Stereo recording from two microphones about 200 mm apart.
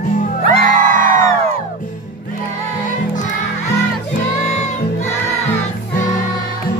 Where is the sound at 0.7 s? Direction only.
40° right (ahead or behind).